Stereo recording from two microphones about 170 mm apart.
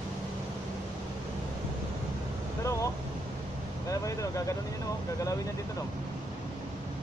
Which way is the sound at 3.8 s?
20° left (ahead or behind).